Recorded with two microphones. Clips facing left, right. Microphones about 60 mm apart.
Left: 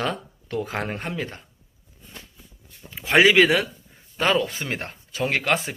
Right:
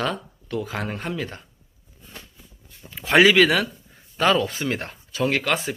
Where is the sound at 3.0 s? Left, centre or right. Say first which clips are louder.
Right 1 dB; centre.